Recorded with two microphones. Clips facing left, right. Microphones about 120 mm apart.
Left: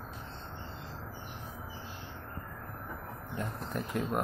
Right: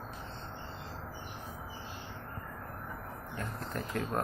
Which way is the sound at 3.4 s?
15° left (ahead or behind).